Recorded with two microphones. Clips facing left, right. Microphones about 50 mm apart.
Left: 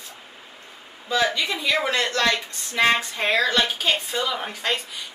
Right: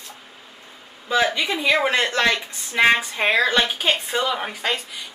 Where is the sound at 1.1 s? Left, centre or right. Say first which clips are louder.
Right 2 dB; right.